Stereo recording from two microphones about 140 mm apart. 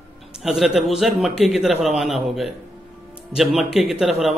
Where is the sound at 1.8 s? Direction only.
Centre (ahead or behind).